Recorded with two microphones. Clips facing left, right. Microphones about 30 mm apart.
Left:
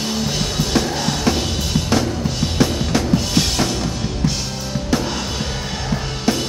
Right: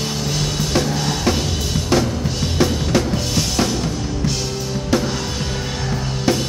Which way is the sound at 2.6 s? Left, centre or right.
Centre.